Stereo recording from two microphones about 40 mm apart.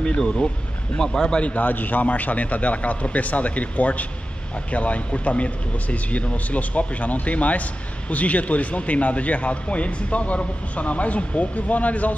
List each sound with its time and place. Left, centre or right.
0.0 s speech: left
1.6 s speech: left